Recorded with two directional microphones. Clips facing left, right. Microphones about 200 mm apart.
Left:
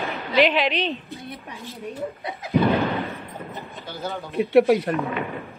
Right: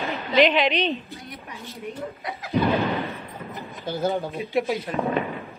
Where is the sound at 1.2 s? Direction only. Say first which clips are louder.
Left 2 dB; 30° left (ahead or behind).